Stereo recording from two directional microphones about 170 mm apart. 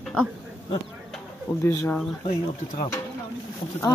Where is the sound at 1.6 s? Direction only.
20° left (ahead or behind).